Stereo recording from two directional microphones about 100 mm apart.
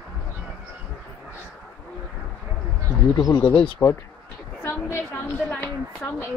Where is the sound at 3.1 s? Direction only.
35° left (ahead or behind).